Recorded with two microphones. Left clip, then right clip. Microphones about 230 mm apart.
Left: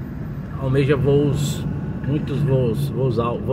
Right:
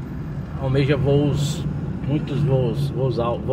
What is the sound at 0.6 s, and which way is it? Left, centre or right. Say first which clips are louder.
Speech: left 2 dB; left.